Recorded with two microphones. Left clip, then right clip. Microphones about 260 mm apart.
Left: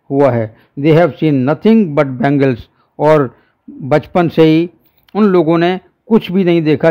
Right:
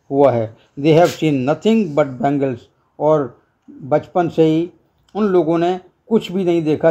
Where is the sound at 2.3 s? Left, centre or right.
Left.